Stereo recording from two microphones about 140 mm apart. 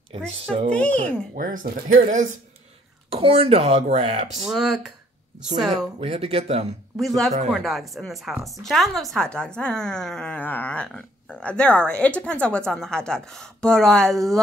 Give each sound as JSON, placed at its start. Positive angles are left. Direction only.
{"t": 0.1, "sound": "speech", "side_deg": -40}
{"t": 0.7, "sound": "speech", "side_deg": 10}
{"t": 1.3, "sound": "speech", "side_deg": -75}
{"t": 3.1, "sound": "speech", "side_deg": -45}
{"t": 4.5, "sound": "a woman's voice", "side_deg": -5}
{"t": 5.9, "sound": "speech", "side_deg": -45}
{"t": 7.0, "sound": "a woman's voice", "side_deg": 0}